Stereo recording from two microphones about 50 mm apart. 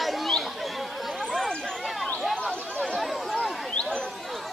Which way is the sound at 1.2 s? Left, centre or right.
Centre.